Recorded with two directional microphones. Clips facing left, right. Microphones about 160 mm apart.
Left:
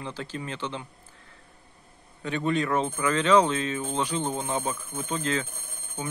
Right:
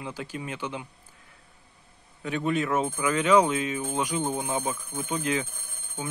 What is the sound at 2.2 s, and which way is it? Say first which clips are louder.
Speech: even; 5° right (ahead or behind).